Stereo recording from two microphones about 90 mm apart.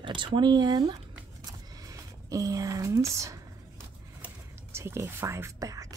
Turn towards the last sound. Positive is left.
turn(degrees=-40)  # may be behind; listen again after turning